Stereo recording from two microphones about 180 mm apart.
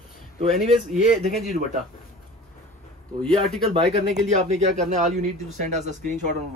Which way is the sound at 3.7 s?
35° right (ahead or behind).